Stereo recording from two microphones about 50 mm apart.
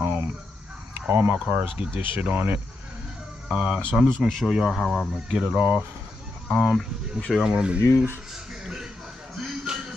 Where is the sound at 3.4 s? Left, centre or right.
Centre.